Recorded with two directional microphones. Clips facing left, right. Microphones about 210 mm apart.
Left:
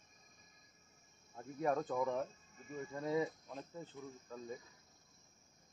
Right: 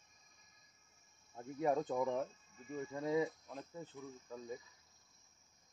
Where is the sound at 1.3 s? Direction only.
20° right (ahead or behind).